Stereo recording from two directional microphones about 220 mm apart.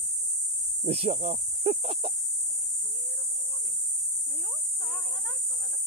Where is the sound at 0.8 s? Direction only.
25° right (ahead or behind).